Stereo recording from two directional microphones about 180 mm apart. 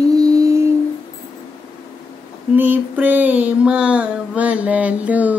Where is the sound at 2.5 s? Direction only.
10° right (ahead or behind).